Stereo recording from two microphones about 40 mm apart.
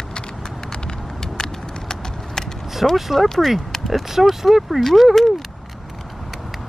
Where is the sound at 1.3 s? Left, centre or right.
Centre.